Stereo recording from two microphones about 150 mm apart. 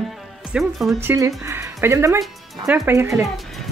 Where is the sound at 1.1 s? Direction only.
20° right (ahead or behind).